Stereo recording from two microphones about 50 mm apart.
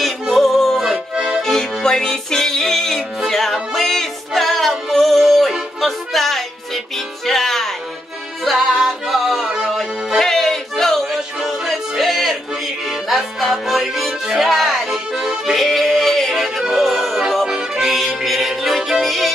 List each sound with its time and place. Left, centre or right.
0.0 s music: centre
1.1 s accordion: centre
1.4 s music: centre